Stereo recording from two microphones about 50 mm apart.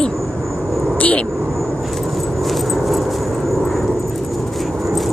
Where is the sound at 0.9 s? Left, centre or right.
Left.